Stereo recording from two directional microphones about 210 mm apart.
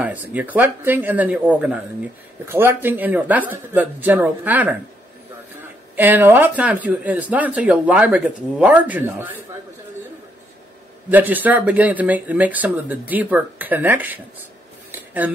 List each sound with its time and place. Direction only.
0.0 s speech: 5° right (ahead or behind)
5.9 s speech: 10° right (ahead or behind)
11.1 s speech: 10° right (ahead or behind)
14.9 s a sound: 5° right (ahead or behind)